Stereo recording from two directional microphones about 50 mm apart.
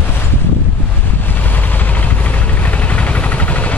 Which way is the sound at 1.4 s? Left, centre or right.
Left.